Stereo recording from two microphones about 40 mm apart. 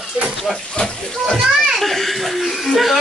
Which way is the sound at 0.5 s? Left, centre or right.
Centre.